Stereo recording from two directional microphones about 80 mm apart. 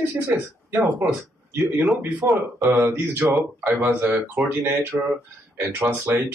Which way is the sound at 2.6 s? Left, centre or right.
Right.